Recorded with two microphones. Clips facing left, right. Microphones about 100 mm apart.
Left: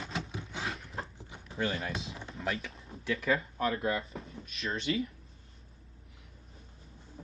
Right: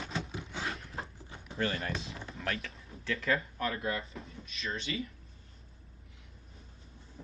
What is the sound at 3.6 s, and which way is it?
Speech, 25° left (ahead or behind).